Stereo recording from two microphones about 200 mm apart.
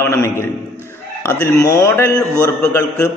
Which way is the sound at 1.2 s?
10° left (ahead or behind).